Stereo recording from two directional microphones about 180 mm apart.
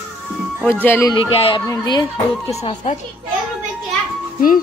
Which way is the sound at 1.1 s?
30° left (ahead or behind).